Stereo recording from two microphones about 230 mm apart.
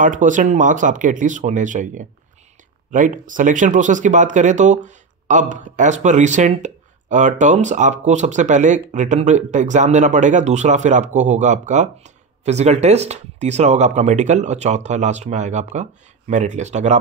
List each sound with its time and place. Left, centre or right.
0.0 s speech: right